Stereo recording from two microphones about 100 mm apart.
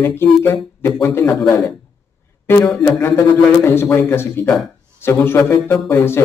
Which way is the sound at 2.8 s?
30° left (ahead or behind).